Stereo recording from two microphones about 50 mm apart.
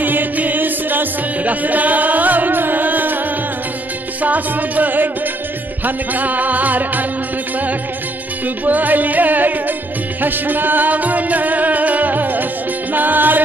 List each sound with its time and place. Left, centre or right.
0.0 s music: right
4.2 s music: right
8.6 s music: right